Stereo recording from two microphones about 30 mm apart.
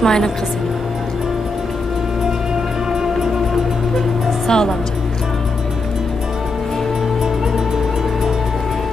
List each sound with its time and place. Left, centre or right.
0.0 s speech: left
2.9 s music: centre
4.5 s speech: left